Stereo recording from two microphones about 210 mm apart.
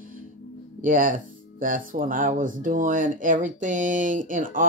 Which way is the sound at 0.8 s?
40° right (ahead or behind).